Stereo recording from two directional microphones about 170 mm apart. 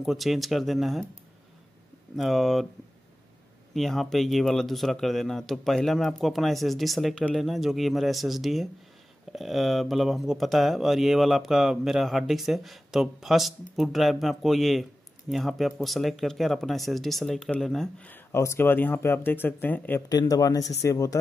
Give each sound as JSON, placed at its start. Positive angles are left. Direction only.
{"t": 0.0, "sound": "speech", "side_deg": 0}
{"t": 2.1, "sound": "speech", "side_deg": 0}
{"t": 3.7, "sound": "speech", "side_deg": 0}
{"t": 20.1, "sound": "speech", "side_deg": 20}